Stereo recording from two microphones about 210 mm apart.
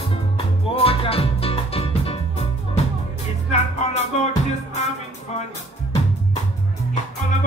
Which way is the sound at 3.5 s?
30° left (ahead or behind).